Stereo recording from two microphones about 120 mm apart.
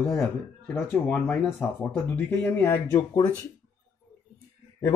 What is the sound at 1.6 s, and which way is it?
Speech, 5° left (ahead or behind).